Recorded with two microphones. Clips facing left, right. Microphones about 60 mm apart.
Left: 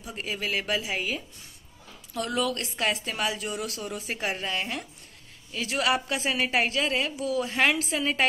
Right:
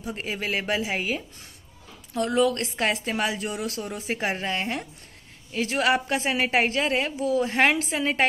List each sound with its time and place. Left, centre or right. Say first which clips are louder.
0.0 s a woman's voice: right 2 dB; right